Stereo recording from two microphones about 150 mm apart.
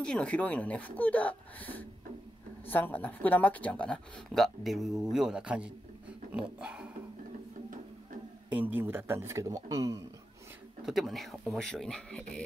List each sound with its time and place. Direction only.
0.0 s a man's voice: 5° left (ahead or behind)
8.5 s a man's voice: 10° right (ahead or behind)
10.9 s speech: centre (ahead or behind)